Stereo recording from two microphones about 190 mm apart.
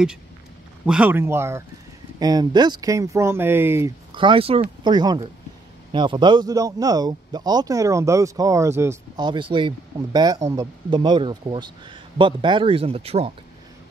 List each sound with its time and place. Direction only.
0.8 s speech: 5° right (ahead or behind)
4.1 s a man's voice: 25° right (ahead or behind)